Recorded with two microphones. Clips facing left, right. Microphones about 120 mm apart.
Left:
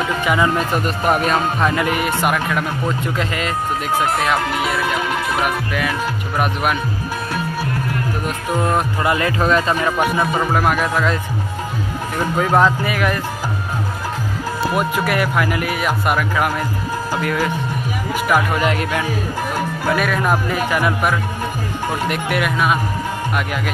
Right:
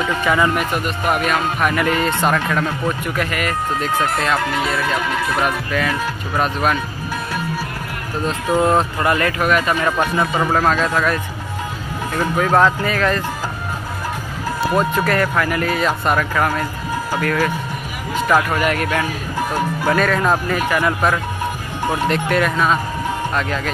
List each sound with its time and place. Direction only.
0.2 s speech: 20° left (ahead or behind)
1.1 s speech: 35° left (ahead or behind); by 6.8 s 15° left (ahead or behind)
8.3 s speech: 20° right (ahead or behind)
9.0 s speech: 20° left (ahead or behind)
9.8 s speech: 15° left (ahead or behind)
12.4 s speech: 15° left (ahead or behind)
14.7 s speech: 10° left (ahead or behind)
19.9 s speech: 10° left (ahead or behind)